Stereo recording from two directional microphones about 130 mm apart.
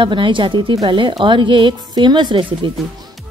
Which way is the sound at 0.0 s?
40° right (ahead or behind).